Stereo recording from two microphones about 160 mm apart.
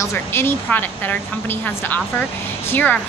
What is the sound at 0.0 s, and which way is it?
Speech, 15° left (ahead or behind).